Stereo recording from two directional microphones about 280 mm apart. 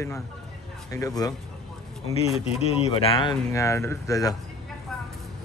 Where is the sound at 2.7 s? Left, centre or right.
Left.